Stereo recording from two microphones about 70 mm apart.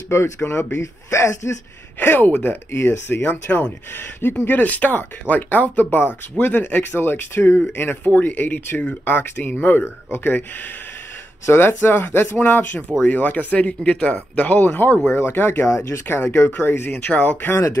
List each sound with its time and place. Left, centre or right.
0.1 s speech: left
2.0 s speech: left
11.4 s speech: left